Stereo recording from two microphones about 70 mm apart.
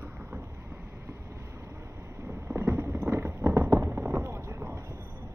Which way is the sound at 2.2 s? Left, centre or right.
Right.